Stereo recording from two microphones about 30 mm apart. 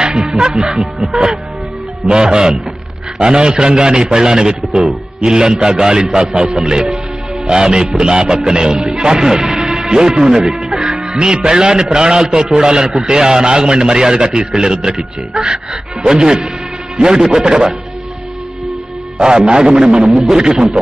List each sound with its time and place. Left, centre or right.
0.0 s music: right
0.7 s speech: centre
2.0 s a man's voice: right
9.6 s music: right
10.9 s a man's voice: right
19.1 s a man's voice: right